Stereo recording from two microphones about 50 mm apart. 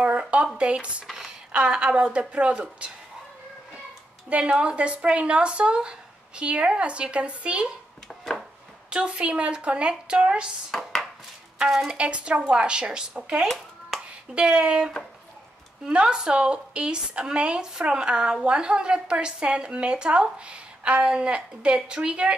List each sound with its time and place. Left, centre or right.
0.0 s a sound: right
0.6 s a woman's voice: right
4.4 s a woman's voice: right
8.9 s a woman's voice: centre
10.7 s chopping: centre
12.0 s a woman's voice: right
14.3 s a woman's voice: right